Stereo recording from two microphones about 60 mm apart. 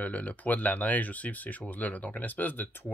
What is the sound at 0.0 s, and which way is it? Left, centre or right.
Speech, left.